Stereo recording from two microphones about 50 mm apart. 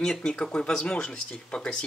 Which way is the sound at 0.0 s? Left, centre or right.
Centre.